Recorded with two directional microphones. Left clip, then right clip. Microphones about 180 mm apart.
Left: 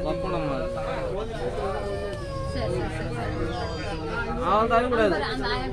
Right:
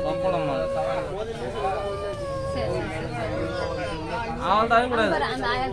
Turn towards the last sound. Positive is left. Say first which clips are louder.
# right 1 dB
turn(degrees=-20)  # may be behind; listen again after turning